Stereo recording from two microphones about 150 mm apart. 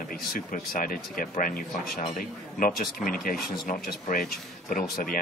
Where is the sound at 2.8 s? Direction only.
70° left (ahead or behind).